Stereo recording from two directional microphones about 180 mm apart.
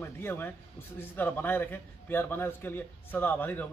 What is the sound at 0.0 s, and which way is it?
A man's voice, 10° left (ahead or behind).